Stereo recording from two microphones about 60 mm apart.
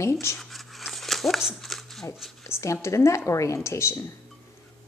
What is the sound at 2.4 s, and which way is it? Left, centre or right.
A woman's voice, left.